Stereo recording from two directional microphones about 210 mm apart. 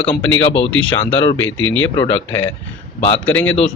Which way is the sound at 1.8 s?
10° left (ahead or behind).